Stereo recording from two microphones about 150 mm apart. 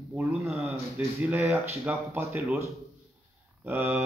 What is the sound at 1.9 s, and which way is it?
Speech, 10° right (ahead or behind).